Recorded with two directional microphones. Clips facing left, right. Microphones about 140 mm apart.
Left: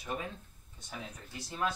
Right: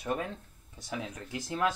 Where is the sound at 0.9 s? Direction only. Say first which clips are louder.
Right 7 dB; 90° right.